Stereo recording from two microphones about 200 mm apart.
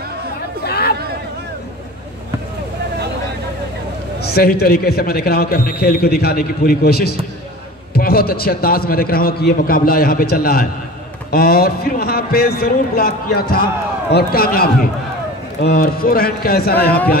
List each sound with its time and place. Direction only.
0.7 s chatter: 50° left (ahead or behind)
4.2 s a man's voice: 50° left (ahead or behind)